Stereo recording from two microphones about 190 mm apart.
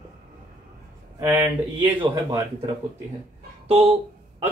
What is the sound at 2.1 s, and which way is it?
Speech, 20° right (ahead or behind).